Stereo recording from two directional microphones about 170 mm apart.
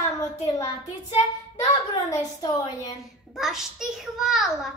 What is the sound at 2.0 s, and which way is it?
Speech, 20° left (ahead or behind).